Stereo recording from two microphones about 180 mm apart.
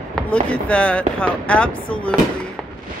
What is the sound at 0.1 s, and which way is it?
Speech, 5° left (ahead or behind).